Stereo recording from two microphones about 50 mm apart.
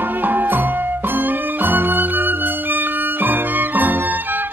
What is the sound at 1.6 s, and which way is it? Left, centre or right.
Music, right.